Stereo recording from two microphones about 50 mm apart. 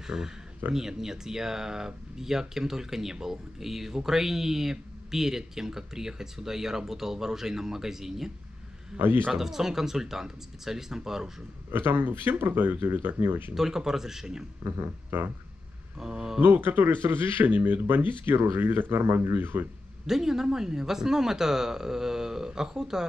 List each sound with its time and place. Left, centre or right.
0.0 s speech: centre
8.9 s speech: right
9.3 s speech: centre
11.7 s speech: right
13.6 s speech: centre
14.6 s speech: right
16.0 s speech: centre
16.3 s speech: right
20.1 s speech: centre